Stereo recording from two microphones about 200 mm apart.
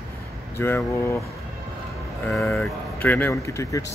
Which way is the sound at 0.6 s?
10° left (ahead or behind).